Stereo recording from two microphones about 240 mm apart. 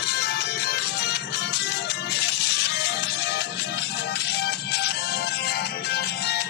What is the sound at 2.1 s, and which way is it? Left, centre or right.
Music, left.